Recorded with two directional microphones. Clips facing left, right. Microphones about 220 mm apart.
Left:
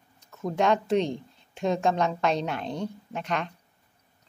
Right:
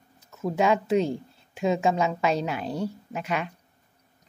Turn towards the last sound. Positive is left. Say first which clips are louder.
# right 1 dB
turn(degrees=-5)  # may be behind; listen again after turning